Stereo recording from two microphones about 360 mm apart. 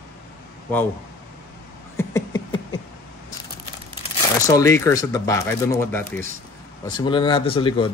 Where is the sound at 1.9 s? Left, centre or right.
Centre.